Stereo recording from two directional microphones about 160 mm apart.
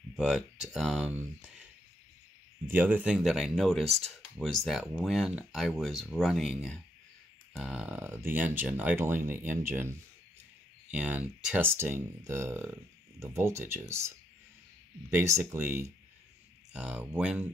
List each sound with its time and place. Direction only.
0.1 s speech: 5° right (ahead or behind)
2.7 s speech: 10° right (ahead or behind)